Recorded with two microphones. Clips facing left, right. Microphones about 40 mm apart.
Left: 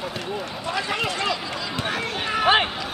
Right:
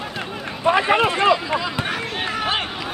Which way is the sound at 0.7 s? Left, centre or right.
Right.